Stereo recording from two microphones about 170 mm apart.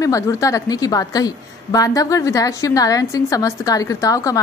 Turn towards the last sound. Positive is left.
turn(degrees=20)  # may be behind; listen again after turning